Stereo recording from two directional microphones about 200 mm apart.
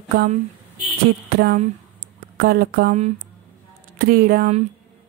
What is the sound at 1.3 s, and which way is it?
A woman's voice, 45° right (ahead or behind).